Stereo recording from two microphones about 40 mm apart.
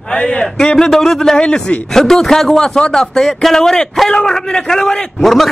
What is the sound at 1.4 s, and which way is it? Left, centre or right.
Speech, left.